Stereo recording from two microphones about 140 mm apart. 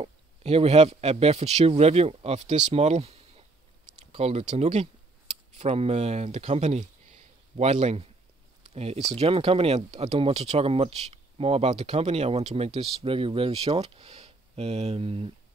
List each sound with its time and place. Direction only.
0.0 s speech: 45° right (ahead or behind)